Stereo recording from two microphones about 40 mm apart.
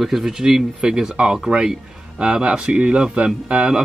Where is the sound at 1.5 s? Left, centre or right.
Right.